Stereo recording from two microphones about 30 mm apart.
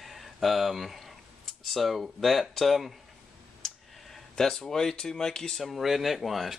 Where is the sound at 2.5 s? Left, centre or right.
Centre.